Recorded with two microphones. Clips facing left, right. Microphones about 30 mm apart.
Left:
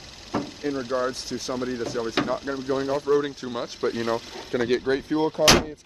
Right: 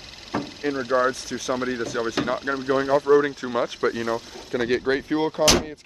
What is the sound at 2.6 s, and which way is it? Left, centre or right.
Speech, right.